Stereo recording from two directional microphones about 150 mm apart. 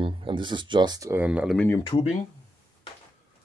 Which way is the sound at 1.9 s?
35° left (ahead or behind).